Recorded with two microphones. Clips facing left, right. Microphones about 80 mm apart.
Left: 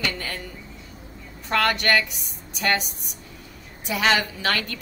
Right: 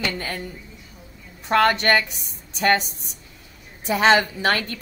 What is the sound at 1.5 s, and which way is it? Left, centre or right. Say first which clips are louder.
A woman's voice: right 4 dB; right.